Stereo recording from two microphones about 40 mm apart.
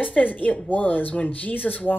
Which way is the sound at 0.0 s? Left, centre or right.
Left.